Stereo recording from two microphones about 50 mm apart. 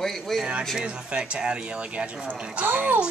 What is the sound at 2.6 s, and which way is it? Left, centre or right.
Speech, right.